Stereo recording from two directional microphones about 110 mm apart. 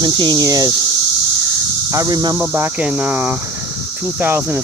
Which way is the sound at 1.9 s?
35° right (ahead or behind).